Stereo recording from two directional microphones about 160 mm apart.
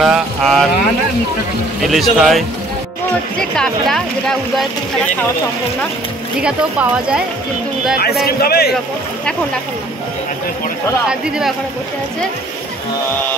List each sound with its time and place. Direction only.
0.0 s speech: centre (ahead or behind)
1.8 s speech: centre (ahead or behind)
6.4 s speech: 5° right (ahead or behind)
8.3 s a man's voice: 75° left (ahead or behind)
11.1 s speech: 5° right (ahead or behind)